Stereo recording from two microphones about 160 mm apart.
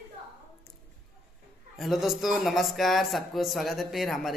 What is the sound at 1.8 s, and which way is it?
Speech, centre (ahead or behind).